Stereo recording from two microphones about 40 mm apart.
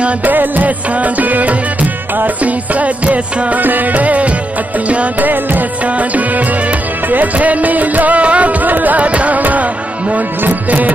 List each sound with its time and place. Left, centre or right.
0.2 s music: right